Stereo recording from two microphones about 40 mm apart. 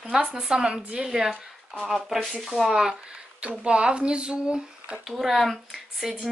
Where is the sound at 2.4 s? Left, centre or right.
Centre.